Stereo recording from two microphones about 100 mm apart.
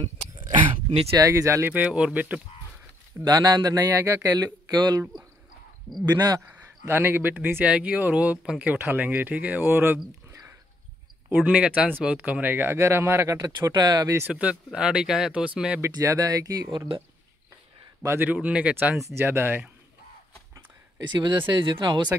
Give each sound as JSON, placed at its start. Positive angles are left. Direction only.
{"t": 0.6, "sound": "speech", "side_deg": -70}
{"t": 1.1, "sound": "speech", "side_deg": -35}
{"t": 1.7, "sound": "speech", "side_deg": -15}
{"t": 3.3, "sound": "speech", "side_deg": -40}
{"t": 6.9, "sound": "speech", "side_deg": -20}
{"t": 8.7, "sound": "speech", "side_deg": -20}
{"t": 11.2, "sound": "speech", "side_deg": -15}
{"t": 13.6, "sound": "speech", "side_deg": -45}
{"t": 14.2, "sound": "speech", "side_deg": -10}
{"t": 16.0, "sound": "speech", "side_deg": -35}
{"t": 18.0, "sound": "speech", "side_deg": -25}
{"t": 18.3, "sound": "speech", "side_deg": -15}
{"t": 21.1, "sound": "speech", "side_deg": -50}